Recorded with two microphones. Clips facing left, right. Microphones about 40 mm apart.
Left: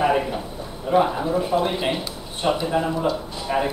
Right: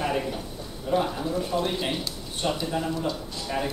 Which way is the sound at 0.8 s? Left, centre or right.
Left.